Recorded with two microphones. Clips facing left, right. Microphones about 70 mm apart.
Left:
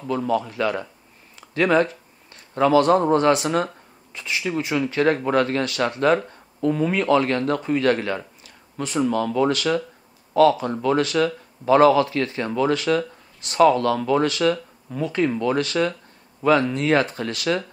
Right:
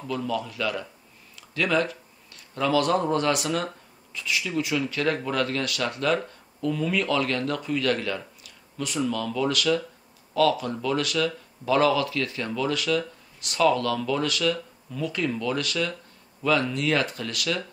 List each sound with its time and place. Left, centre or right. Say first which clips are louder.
0.0 s speech: left 6 dB; left